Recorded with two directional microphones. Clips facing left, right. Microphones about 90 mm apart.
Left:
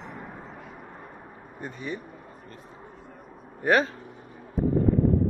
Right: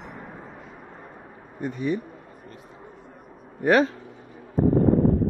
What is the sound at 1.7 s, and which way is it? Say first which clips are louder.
Speech: right 9 dB; 55° right (ahead or behind).